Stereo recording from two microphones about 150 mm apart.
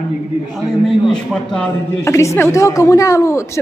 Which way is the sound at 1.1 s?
5° left (ahead or behind).